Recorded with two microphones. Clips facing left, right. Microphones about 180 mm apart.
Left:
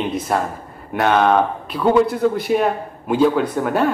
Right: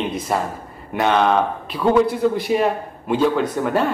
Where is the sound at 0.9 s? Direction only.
5° left (ahead or behind).